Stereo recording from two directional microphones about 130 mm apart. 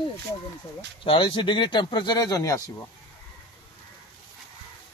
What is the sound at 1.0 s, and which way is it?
Speech, 40° left (ahead or behind).